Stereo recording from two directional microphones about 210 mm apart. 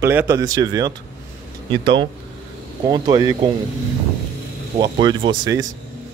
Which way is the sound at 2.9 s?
15° right (ahead or behind).